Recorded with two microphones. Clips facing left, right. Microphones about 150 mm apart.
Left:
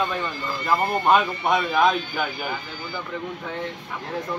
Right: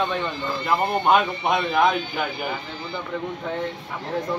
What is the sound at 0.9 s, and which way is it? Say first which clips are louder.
Speech: even; 15° right (ahead or behind).